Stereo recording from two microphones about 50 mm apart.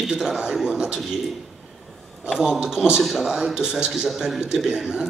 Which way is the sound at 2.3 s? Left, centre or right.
Centre.